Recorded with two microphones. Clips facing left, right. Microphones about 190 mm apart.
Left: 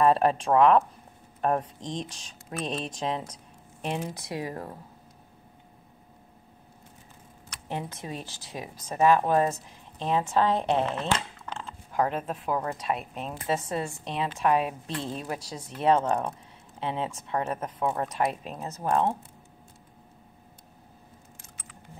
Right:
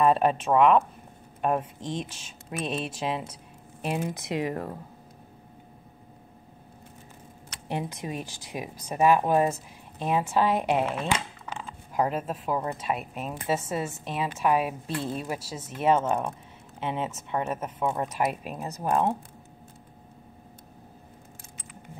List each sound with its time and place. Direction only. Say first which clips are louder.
0.0 s speech: even; centre (ahead or behind)
4.1 s speech: right 5 dB; 20° right (ahead or behind)
7.6 s speech: right 3 dB; 15° right (ahead or behind)